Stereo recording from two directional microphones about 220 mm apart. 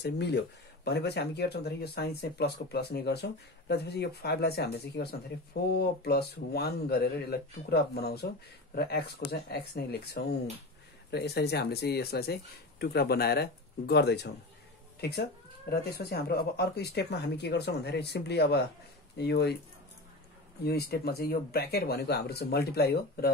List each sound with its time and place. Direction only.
0.0 s speech: 50° left (ahead or behind)
20.6 s speech: 45° left (ahead or behind)